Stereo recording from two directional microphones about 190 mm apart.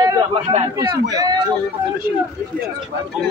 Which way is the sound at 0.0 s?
30° right (ahead or behind).